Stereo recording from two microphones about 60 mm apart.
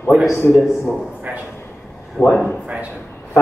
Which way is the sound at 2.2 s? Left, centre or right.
Centre.